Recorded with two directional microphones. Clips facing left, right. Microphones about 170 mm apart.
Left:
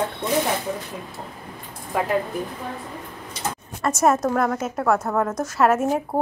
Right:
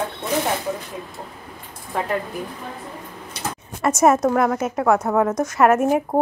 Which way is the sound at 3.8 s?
10° right (ahead or behind).